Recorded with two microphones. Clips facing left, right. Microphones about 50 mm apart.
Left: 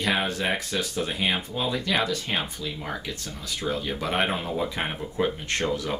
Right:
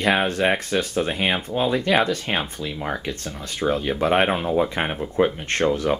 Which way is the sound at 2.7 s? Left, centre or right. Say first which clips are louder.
Right 5 dB; right.